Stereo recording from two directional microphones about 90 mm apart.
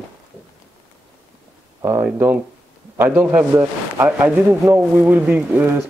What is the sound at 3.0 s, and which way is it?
Speech, 20° right (ahead or behind).